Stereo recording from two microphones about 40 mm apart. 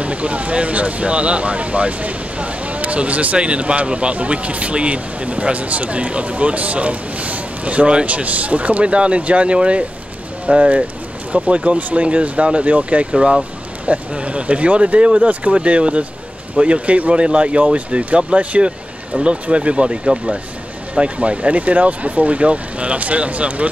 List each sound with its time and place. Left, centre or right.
0.0 s speech: right
13.0 s speech: right